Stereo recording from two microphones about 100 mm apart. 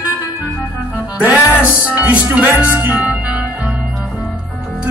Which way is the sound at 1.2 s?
15° right (ahead or behind).